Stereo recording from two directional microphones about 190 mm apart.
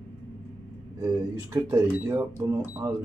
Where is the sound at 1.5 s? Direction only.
15° right (ahead or behind).